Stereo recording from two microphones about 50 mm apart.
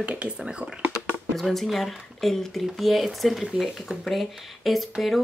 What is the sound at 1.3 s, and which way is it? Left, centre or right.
Speech, centre.